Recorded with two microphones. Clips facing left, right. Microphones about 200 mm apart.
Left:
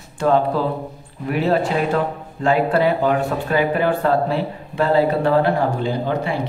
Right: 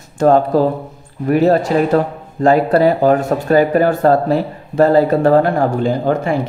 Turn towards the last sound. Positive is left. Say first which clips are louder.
# right 5 dB
turn(degrees=-45)  # may be behind; listen again after turning